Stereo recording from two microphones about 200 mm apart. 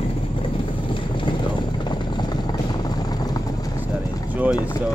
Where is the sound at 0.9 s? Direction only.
25° left (ahead or behind).